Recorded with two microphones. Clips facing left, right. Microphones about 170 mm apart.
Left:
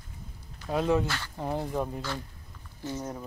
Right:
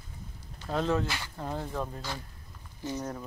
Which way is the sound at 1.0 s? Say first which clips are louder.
Left 2 dB; 15° right (ahead or behind).